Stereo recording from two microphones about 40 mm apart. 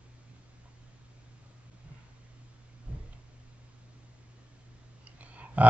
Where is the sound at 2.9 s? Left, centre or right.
Right.